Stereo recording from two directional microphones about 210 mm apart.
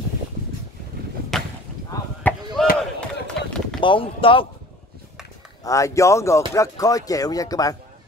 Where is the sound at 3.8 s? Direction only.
25° left (ahead or behind).